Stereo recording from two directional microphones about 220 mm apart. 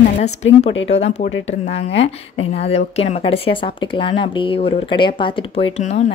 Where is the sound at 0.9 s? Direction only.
30° left (ahead or behind).